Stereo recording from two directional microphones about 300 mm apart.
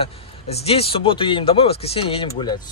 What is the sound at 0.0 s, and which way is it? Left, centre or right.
A man's voice, centre.